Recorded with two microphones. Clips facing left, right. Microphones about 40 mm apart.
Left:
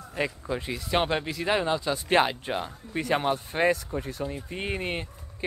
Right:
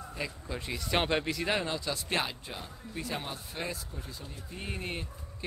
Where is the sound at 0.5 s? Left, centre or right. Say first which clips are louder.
Left 6 dB; centre.